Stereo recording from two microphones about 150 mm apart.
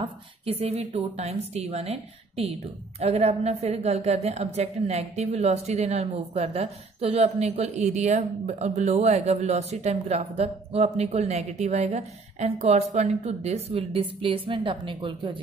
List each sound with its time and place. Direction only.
0.0 s a woman's voice: 40° right (ahead or behind)